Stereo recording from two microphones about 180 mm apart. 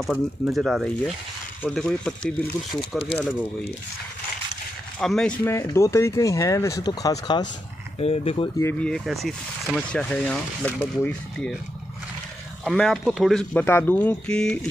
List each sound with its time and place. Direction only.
0.0 s speech: centre (ahead or behind)
4.9 s speech: 5° left (ahead or behind); by 7.4 s 20° left (ahead or behind)
8.0 s speech: 35° left (ahead or behind)
8.5 s speech: 10° left (ahead or behind)
12.6 s speech: centre (ahead or behind)